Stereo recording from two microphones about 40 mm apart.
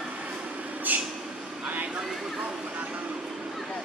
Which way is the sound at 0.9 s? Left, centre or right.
Right.